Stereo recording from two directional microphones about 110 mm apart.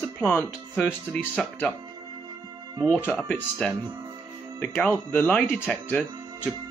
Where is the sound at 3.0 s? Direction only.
15° left (ahead or behind).